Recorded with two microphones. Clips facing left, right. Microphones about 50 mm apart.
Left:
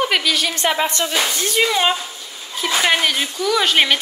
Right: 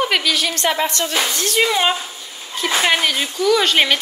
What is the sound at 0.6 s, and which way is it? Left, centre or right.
Music, centre.